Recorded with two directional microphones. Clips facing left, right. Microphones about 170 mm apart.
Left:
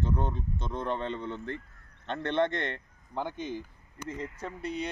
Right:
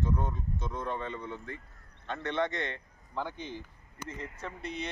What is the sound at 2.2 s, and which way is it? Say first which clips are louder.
A man's voice: left 4 dB; 55° left (ahead or behind).